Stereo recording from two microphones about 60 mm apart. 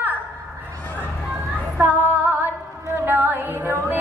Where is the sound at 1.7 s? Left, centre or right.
Right.